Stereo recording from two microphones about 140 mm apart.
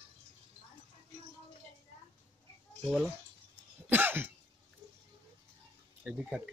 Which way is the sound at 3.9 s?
15° right (ahead or behind).